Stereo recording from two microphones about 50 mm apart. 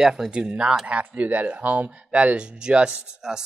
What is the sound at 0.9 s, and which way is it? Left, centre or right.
Speech, right.